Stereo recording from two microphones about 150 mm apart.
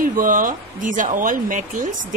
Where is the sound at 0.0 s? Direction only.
65° right (ahead or behind).